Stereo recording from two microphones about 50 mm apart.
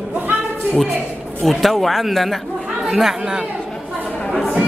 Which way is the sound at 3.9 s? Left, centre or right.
Right.